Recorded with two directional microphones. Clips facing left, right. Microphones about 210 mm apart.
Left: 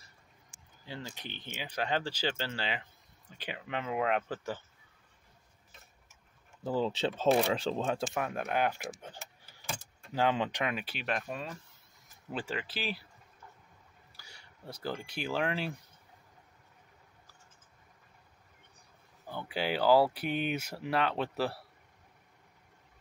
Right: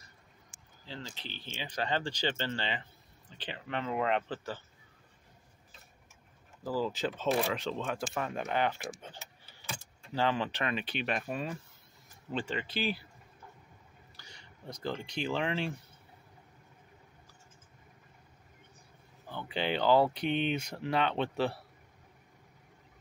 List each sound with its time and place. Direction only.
0.8 s speech: 15° left (ahead or behind)
6.6 s speech: 25° left (ahead or behind)
8.1 s speech: 10° left (ahead or behind)
14.1 s a sound: 10° left (ahead or behind)
15.0 s speech: 5° left (ahead or behind)
19.2 s speech: 10° left (ahead or behind)